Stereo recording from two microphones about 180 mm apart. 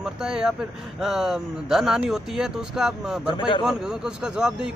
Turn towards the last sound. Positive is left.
turn(degrees=-5)  # may be behind; listen again after turning